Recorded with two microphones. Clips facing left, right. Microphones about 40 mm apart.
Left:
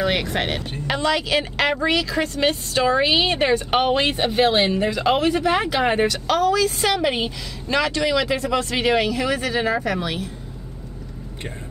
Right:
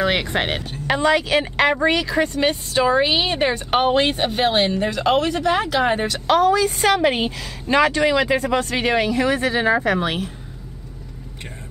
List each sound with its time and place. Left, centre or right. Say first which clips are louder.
0.0 s a woman's voice: right 2 dB; right
2.4 s speech: left 2 dB; centre
5.5 s speech: right 1 dB; left
6.1 s a woman's voice: right 3 dB; right
8.7 s speech: left 2 dB; centre
9.1 s a woman's voice: right 3 dB; right